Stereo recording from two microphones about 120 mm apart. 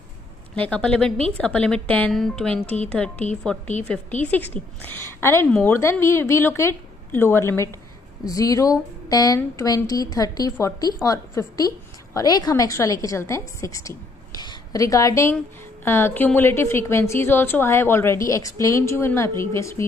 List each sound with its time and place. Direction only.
0.6 s a woman's voice: 10° left (ahead or behind)